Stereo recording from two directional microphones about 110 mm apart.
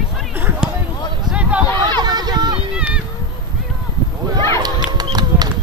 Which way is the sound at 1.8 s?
40° right (ahead or behind).